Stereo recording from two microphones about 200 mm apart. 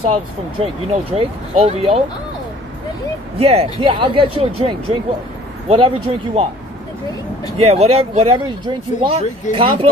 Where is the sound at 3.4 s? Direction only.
30° right (ahead or behind).